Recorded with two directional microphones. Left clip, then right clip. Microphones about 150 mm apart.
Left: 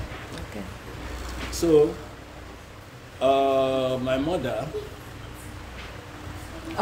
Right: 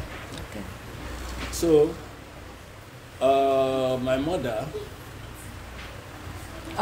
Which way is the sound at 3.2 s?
10° left (ahead or behind).